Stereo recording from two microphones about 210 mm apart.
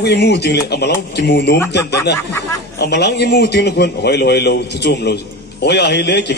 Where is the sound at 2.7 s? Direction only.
50° left (ahead or behind).